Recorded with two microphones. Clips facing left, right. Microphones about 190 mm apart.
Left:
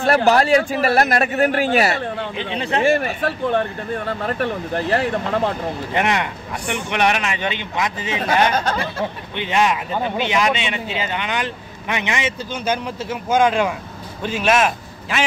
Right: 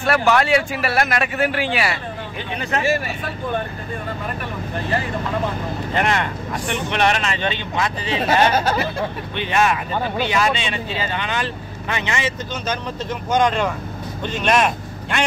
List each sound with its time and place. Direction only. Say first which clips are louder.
0.0 s speech: left 2 dB; 35° left (ahead or behind)
2.5 s speech: left 1 dB; 30° left (ahead or behind)
2.8 s speech: left 6 dB; 55° left (ahead or behind); by 5.1 s 75° left (ahead or behind)
5.9 s speech: even; 15° left (ahead or behind)
8.5 s speech: right 2 dB; 10° right (ahead or behind)
9.4 s a man's voice: even; 15° left (ahead or behind)